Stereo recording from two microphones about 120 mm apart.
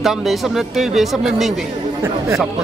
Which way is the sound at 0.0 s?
Centre (ahead or behind).